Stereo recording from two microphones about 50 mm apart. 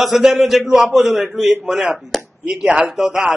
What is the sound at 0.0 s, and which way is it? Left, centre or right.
A man's voice, centre.